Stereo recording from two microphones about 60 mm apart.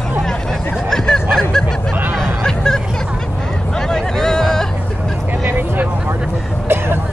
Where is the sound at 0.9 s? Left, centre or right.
Centre.